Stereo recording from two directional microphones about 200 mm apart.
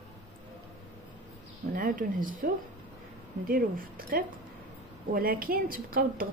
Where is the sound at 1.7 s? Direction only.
45° right (ahead or behind).